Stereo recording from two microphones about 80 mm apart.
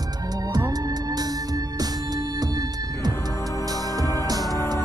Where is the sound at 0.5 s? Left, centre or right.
Right.